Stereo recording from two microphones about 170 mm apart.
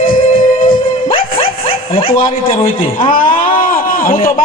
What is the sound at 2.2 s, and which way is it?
Speech, 30° left (ahead or behind).